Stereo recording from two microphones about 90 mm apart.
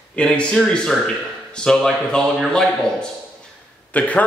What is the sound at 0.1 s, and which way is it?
Speech, 10° left (ahead or behind).